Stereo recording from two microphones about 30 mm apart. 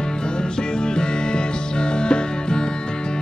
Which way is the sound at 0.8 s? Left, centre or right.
Left.